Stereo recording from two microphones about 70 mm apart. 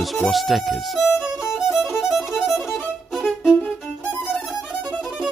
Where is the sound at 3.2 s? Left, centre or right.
Centre.